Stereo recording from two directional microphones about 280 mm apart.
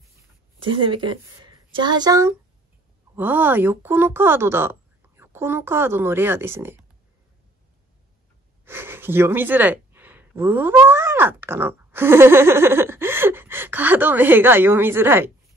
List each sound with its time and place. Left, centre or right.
0.6 s speech: centre
8.6 s speech: centre